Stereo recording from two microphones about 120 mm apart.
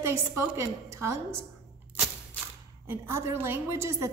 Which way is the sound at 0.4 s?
25° right (ahead or behind).